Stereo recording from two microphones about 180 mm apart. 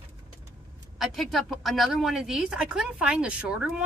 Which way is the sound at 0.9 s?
Centre (ahead or behind).